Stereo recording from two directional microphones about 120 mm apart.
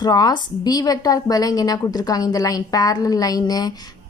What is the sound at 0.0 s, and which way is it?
A woman's voice, 35° left (ahead or behind).